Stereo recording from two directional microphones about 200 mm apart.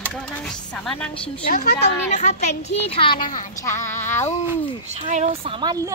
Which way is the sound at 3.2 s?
40° left (ahead or behind).